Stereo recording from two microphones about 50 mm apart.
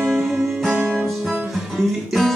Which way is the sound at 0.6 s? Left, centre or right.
Right.